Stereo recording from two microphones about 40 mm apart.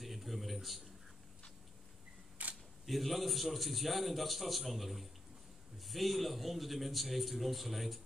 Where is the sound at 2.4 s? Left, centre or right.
Right.